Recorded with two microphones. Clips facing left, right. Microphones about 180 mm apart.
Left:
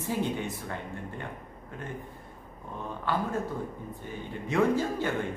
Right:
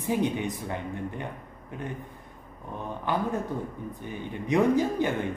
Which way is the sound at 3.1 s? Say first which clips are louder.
Right 2 dB; 20° right (ahead or behind).